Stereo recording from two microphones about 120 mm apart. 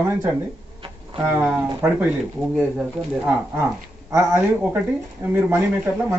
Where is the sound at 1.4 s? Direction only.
10° right (ahead or behind).